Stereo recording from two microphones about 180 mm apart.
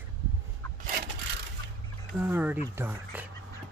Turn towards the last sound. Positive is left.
turn(degrees=-10)  # may be behind; listen again after turning